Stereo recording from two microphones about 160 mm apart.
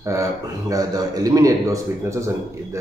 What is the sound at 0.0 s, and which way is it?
A man's voice, 20° right (ahead or behind).